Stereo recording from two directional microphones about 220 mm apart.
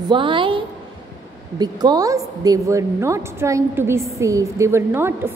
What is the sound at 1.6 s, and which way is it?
A woman's voice, 20° right (ahead or behind).